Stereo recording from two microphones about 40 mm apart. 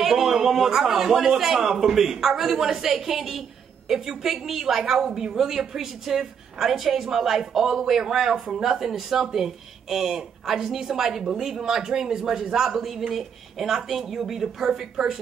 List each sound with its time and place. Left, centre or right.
0.0 s speech: centre
8.5 s speech: centre